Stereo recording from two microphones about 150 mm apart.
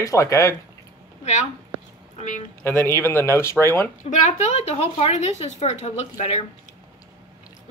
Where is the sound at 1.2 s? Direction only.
50° left (ahead or behind).